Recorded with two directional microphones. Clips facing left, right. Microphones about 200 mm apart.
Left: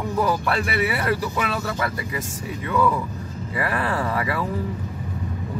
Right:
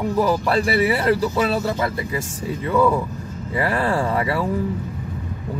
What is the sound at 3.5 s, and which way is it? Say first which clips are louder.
Speech: right 4 dB; 30° right (ahead or behind).